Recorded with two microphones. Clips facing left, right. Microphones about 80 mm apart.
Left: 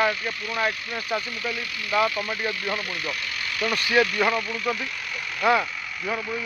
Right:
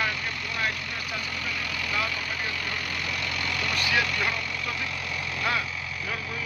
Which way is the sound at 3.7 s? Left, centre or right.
Left.